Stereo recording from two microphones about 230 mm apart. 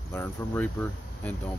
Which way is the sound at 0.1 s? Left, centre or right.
Centre.